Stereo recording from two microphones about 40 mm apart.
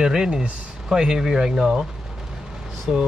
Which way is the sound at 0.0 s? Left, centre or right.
Centre.